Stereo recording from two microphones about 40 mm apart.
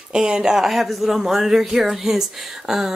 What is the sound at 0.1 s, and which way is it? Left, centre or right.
Speech, centre.